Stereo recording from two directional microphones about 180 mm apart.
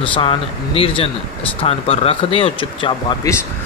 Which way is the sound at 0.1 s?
30° left (ahead or behind).